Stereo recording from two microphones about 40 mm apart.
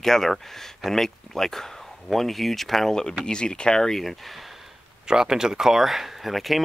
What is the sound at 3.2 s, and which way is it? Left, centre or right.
Speech, left.